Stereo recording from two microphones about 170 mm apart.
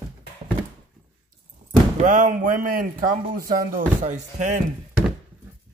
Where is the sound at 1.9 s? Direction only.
50° right (ahead or behind).